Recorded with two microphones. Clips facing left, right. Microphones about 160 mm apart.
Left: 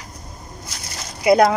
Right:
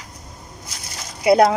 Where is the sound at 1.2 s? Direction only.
30° right (ahead or behind).